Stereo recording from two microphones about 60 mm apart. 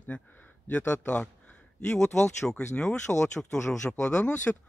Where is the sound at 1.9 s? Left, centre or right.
Left.